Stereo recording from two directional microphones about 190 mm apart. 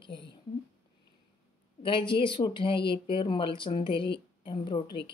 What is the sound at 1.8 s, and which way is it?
Speech, 25° left (ahead or behind).